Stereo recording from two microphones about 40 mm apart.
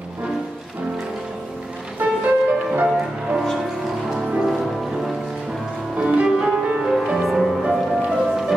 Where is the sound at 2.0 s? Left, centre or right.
Right.